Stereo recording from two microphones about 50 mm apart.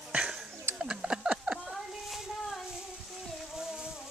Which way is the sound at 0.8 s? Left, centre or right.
Centre.